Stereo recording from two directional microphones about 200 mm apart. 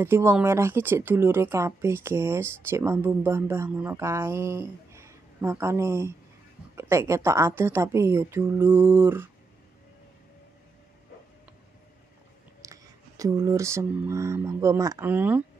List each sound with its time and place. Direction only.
0.0 s speech: 10° right (ahead or behind)
12.6 s a sound: 15° right (ahead or behind)
13.2 s speech: 15° right (ahead or behind)